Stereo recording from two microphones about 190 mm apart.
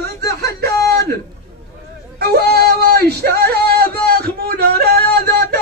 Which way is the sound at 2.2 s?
55° right (ahead or behind).